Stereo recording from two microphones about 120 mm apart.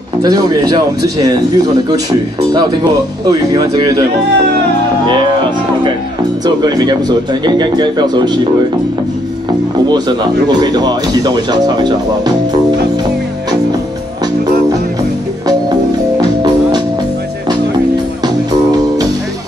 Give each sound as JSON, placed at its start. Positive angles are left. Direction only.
{"t": 0.2, "sound": "speech", "side_deg": -35}
{"t": 3.3, "sound": "speech", "side_deg": -30}
{"t": 6.4, "sound": "speech", "side_deg": -35}
{"t": 9.8, "sound": "speech", "side_deg": -35}